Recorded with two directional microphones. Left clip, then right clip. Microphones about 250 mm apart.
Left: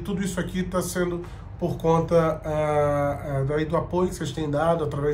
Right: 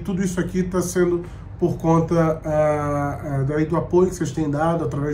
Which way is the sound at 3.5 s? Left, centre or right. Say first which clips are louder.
Right 5 dB; centre.